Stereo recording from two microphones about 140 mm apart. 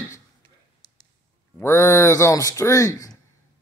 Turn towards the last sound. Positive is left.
turn(degrees=20)  # may be behind; listen again after turning